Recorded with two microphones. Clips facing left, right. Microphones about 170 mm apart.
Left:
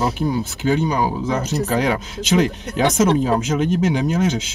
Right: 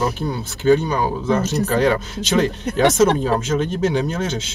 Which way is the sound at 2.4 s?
15° left (ahead or behind).